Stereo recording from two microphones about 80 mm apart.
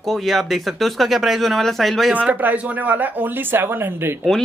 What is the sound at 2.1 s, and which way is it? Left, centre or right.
Speech, right.